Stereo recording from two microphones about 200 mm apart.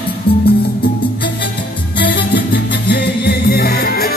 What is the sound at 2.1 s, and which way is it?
Music, 60° left (ahead or behind).